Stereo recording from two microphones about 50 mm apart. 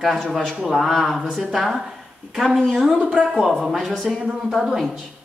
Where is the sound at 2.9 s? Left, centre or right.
Right.